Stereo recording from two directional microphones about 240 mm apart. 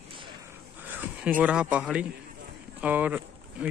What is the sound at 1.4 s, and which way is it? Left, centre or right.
A man's voice, centre.